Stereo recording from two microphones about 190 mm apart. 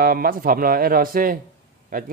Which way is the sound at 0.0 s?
50° right (ahead or behind).